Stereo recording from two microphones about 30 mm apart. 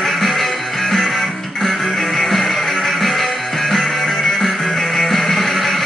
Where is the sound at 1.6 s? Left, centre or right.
Centre.